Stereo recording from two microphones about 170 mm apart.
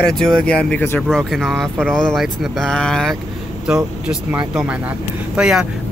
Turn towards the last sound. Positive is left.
turn(degrees=-5)  # may be behind; listen again after turning